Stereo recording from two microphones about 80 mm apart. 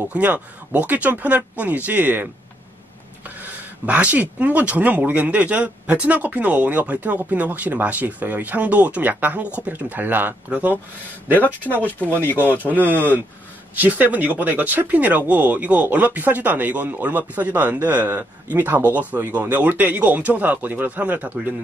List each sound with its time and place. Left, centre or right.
0.1 s speech: centre
3.3 s speech: right
11.3 s speech: left
13.7 s speech: right